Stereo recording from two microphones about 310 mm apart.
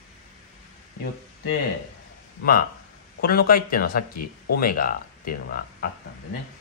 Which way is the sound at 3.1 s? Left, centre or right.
Left.